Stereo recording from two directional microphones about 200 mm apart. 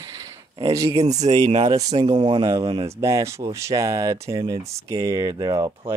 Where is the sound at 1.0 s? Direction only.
35° right (ahead or behind).